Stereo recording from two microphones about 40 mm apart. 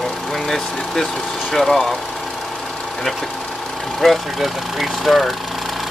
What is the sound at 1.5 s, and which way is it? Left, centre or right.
Speech, centre.